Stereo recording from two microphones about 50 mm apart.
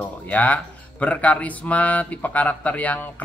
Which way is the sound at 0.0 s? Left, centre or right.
Left.